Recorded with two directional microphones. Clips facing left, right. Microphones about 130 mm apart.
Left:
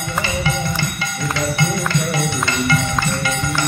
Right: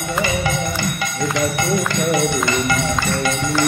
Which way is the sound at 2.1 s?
15° right (ahead or behind).